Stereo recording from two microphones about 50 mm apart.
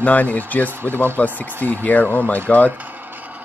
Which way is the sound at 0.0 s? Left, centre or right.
Left.